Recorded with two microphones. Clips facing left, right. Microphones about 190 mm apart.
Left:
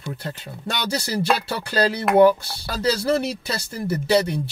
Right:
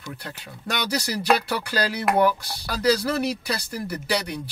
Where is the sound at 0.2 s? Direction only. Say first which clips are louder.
Left 5 dB; 25° left (ahead or behind).